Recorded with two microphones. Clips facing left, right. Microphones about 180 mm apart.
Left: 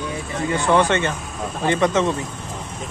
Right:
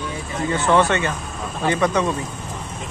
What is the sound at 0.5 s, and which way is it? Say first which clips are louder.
Speech: even; 15° left (ahead or behind).